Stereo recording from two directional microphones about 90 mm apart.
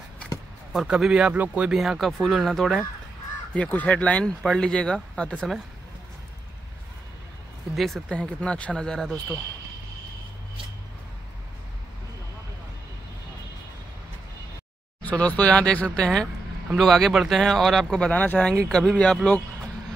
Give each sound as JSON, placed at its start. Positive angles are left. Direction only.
{"t": 0.7, "sound": "speech", "side_deg": -5}
{"t": 1.8, "sound": "speech", "side_deg": 0}
{"t": 3.5, "sound": "speech", "side_deg": 15}
{"t": 7.7, "sound": "speech", "side_deg": 0}
{"t": 8.1, "sound": "speech", "side_deg": 15}
{"t": 15.0, "sound": "speech", "side_deg": 15}
{"t": 18.2, "sound": "speech", "side_deg": 20}
{"t": 18.5, "sound": "speech", "side_deg": 5}